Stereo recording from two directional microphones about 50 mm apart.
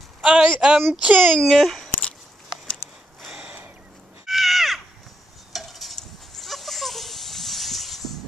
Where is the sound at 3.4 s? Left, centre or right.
Right.